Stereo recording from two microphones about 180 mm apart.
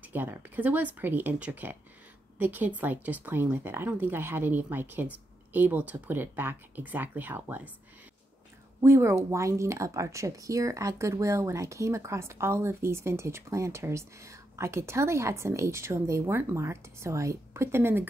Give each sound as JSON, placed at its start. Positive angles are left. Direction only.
{"t": 0.0, "sound": "speech", "side_deg": -10}
{"t": 8.8, "sound": "speech", "side_deg": -15}